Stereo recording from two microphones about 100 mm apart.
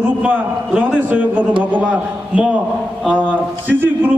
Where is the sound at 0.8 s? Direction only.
15° right (ahead or behind).